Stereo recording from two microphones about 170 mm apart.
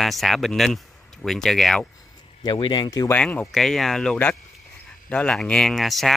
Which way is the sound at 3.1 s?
10° left (ahead or behind).